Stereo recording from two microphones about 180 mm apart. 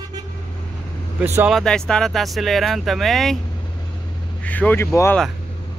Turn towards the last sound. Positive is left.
turn(degrees=15)  # may be behind; listen again after turning